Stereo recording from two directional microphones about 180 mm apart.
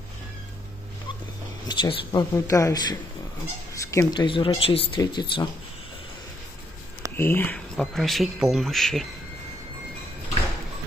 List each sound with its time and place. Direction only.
1.7 s speech: 25° left (ahead or behind)
7.2 s speech: 10° left (ahead or behind)